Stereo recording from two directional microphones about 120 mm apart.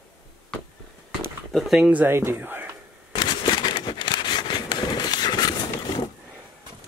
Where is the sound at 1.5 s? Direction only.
5° right (ahead or behind).